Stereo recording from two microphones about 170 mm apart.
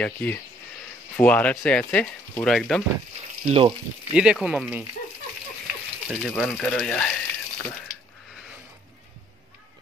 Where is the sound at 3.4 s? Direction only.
35° right (ahead or behind).